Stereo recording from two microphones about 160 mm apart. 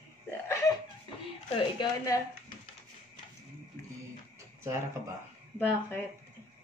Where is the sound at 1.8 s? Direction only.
20° left (ahead or behind).